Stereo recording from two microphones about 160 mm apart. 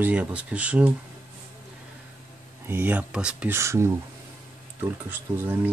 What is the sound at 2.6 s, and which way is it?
Speech, 15° right (ahead or behind).